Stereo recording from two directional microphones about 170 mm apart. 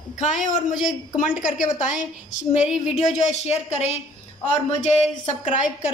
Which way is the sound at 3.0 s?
40° left (ahead or behind).